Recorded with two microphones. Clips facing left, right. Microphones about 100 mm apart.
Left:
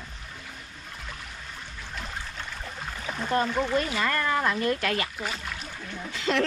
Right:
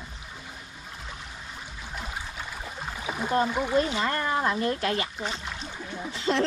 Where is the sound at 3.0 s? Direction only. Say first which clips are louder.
Right 1 dB; 10° right (ahead or behind).